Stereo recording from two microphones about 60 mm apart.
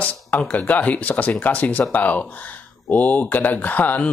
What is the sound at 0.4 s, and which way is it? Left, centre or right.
Speech, left.